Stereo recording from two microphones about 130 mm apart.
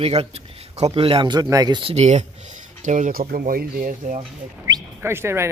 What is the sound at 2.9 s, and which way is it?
Speech, 80° right.